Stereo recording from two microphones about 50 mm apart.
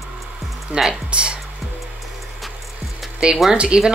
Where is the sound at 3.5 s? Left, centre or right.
Right.